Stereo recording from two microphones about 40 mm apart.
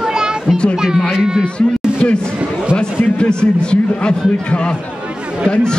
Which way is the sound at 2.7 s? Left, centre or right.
Left.